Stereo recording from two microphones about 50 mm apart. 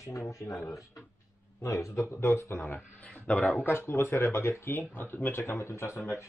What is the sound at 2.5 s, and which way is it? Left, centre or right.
Speech, left.